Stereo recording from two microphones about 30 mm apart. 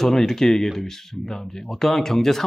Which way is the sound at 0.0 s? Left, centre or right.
Centre.